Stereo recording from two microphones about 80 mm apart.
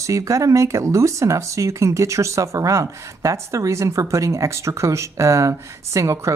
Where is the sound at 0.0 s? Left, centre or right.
Right.